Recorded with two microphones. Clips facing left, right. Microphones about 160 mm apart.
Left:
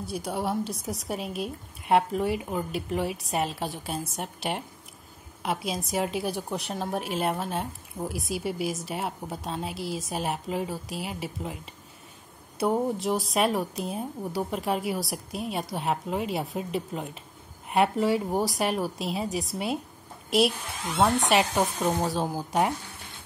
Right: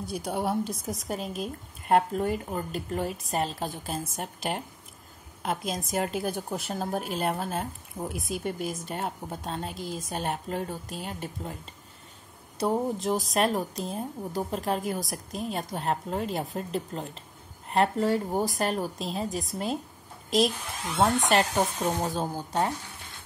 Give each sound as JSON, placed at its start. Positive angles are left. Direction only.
{"t": 0.2, "sound": "a woman's voice", "side_deg": 0}
{"t": 19.2, "sound": "a woman's voice", "side_deg": 80}
{"t": 20.2, "sound": "a woman's voice", "side_deg": 5}